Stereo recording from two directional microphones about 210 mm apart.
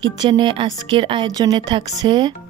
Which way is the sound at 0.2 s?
25° right (ahead or behind).